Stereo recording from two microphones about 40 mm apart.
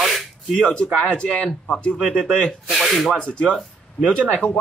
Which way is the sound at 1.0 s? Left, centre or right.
Left.